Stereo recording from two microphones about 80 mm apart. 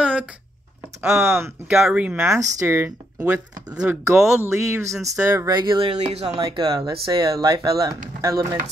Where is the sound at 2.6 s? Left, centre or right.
Right.